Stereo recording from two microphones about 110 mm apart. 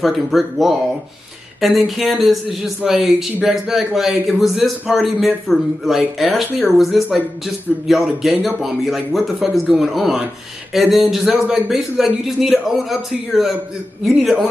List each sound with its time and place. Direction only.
0.0 s speech: centre (ahead or behind)